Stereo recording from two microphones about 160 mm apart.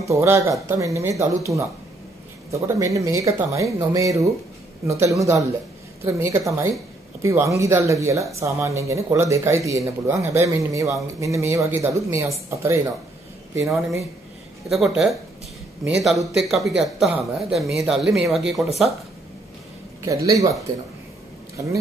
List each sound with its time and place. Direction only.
0.0 s speech: 20° right (ahead or behind)
14.7 s speech: 5° right (ahead or behind)
20.0 s speech: 20° right (ahead or behind)